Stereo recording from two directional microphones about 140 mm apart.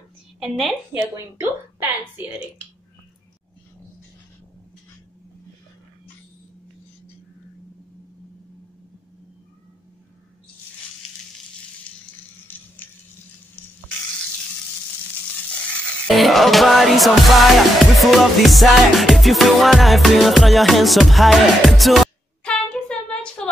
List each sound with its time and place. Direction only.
0.4 s a woman's voice: centre (ahead or behind)
1.1 s speech: 15° right (ahead or behind)
11.9 s frying: 10° left (ahead or behind)
12.5 s a sound: 15° left (ahead or behind)
13.6 s stir: 15° left (ahead or behind)
16.2 s music: centre (ahead or behind)